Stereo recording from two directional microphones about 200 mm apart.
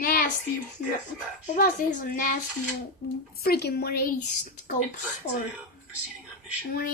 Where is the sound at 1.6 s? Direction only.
45° left (ahead or behind).